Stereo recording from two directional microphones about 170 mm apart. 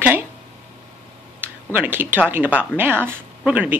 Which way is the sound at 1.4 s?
10° right (ahead or behind).